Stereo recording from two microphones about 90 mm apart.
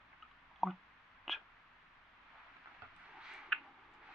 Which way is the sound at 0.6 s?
Centre (ahead or behind).